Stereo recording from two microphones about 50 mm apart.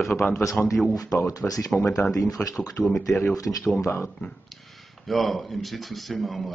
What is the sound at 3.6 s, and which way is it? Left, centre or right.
Speech, left.